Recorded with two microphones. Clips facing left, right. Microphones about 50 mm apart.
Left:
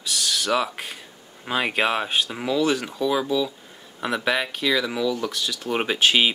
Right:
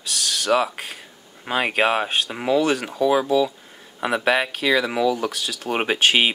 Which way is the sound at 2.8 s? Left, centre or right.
Centre.